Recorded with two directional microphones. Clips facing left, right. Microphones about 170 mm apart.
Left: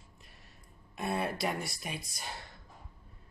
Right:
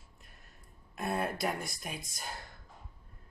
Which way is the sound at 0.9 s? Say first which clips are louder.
Even; centre (ahead or behind).